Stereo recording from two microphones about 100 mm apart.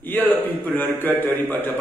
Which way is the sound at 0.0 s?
20° left (ahead or behind).